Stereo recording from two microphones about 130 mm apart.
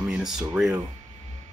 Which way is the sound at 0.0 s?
5° right (ahead or behind).